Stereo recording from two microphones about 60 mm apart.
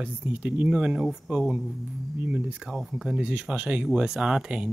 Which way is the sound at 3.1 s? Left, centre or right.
Centre.